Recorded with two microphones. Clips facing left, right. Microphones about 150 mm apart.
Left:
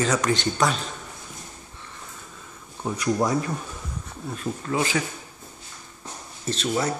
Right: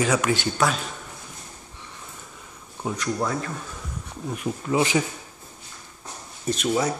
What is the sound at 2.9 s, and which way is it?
Speech, 15° left (ahead or behind).